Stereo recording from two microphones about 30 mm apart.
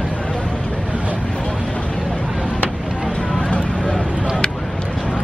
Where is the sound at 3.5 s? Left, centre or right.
Left.